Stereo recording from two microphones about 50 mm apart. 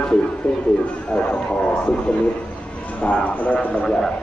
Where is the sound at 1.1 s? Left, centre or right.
Centre.